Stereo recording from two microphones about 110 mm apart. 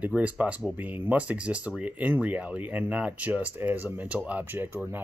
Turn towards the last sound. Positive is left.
turn(degrees=-20)  # may be behind; listen again after turning